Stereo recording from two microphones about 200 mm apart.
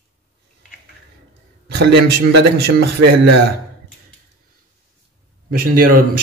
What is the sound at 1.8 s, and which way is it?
A man's voice, 55° right (ahead or behind).